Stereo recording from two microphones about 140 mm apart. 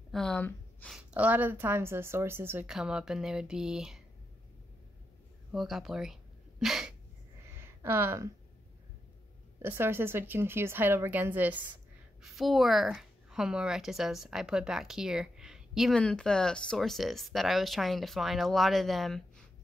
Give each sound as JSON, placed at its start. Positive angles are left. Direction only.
{"t": 0.1, "sound": "gasp", "side_deg": 5}
{"t": 0.8, "sound": "a woman's voice", "side_deg": -5}
{"t": 2.6, "sound": "a woman's voice", "side_deg": -5}
{"t": 5.5, "sound": "a woman's voice", "side_deg": 0}
{"t": 6.6, "sound": "a sound", "side_deg": -5}
{"t": 7.5, "sound": "a sound", "side_deg": -15}
{"t": 9.6, "sound": "a woman's voice", "side_deg": -15}
{"t": 12.2, "sound": "a woman's voice", "side_deg": 0}